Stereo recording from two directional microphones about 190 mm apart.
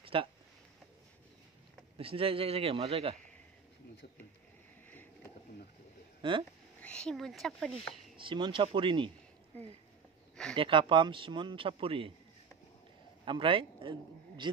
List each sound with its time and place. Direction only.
0.0 s a sound: 30° right (ahead or behind)
2.0 s a man's voice: 30° right (ahead or behind)
6.8 s speech: 5° left (ahead or behind)
8.2 s speech: 25° right (ahead or behind)
10.5 s speech: 25° right (ahead or behind)
13.2 s a man's voice: 25° right (ahead or behind)